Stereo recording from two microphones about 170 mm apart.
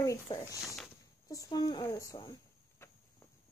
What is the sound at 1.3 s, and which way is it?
A child's voice, 20° left (ahead or behind).